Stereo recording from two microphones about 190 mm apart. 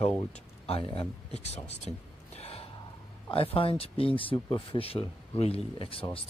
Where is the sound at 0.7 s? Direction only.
30° left (ahead or behind).